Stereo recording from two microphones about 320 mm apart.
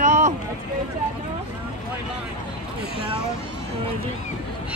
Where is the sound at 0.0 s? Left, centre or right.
Right.